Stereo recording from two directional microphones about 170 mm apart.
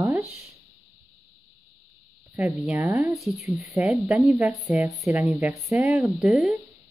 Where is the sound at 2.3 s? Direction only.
10° right (ahead or behind).